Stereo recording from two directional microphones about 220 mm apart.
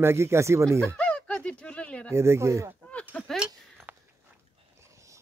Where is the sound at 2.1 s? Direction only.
10° right (ahead or behind).